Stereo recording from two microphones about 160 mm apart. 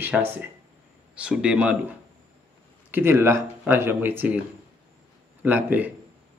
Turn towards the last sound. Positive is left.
turn(degrees=-10)  # may be behind; listen again after turning